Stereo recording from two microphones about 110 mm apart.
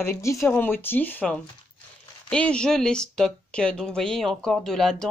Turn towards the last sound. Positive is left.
turn(degrees=5)  # may be behind; listen again after turning